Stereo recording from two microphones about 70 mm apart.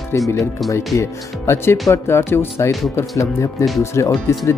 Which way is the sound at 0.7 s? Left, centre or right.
Left.